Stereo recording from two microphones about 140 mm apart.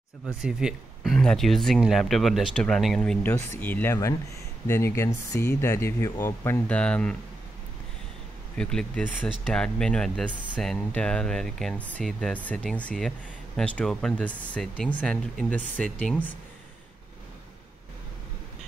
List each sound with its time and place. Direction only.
0.4 s speech: 5° right (ahead or behind)
8.5 s speech: 5° left (ahead or behind)